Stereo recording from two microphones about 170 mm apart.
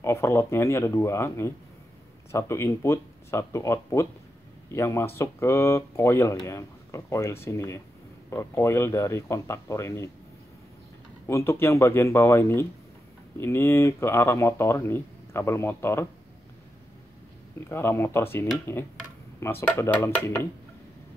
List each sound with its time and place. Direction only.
0.0 s speech: 15° left (ahead or behind)
11.2 s speech: 15° left (ahead or behind)
17.6 s speech: 15° left (ahead or behind)